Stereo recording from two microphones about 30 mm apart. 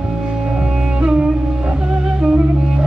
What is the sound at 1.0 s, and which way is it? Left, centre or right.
Music, right.